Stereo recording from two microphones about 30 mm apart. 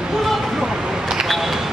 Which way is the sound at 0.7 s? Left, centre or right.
Centre.